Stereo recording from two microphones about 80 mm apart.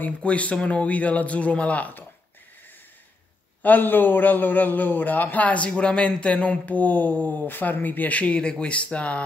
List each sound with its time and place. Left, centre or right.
0.0 s a man's voice: centre
3.6 s a man's voice: left